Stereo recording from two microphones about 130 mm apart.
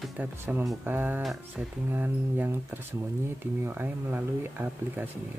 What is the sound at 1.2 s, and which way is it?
Speech, centre (ahead or behind).